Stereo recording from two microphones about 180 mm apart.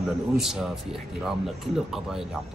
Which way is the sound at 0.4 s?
Centre (ahead or behind).